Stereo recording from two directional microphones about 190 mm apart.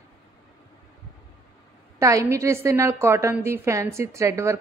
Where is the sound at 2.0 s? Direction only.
15° right (ahead or behind).